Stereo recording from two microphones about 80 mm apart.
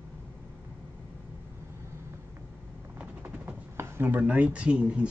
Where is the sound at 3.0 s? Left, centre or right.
Right.